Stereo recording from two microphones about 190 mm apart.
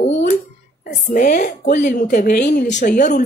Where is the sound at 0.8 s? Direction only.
45° left (ahead or behind).